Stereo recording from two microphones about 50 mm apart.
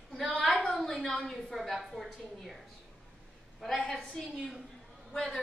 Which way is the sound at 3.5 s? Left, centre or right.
Centre.